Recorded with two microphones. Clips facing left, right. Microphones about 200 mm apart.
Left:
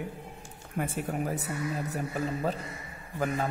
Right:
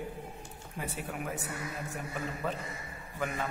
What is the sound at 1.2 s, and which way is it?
A man's voice, 35° left (ahead or behind).